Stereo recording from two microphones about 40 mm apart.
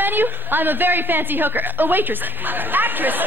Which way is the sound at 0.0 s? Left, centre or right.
Right.